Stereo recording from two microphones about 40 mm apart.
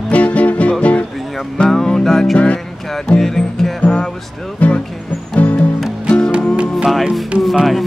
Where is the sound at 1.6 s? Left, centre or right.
Centre.